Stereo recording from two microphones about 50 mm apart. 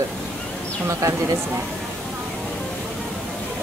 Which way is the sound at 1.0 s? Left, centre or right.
Right.